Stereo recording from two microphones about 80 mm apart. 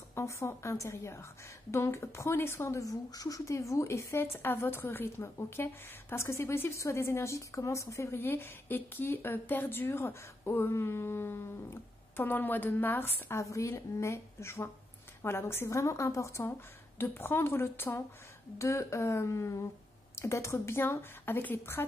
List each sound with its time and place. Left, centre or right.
0.1 s speech: left
2.8 s speech: left